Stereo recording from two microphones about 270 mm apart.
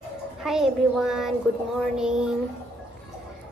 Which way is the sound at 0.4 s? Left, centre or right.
Centre.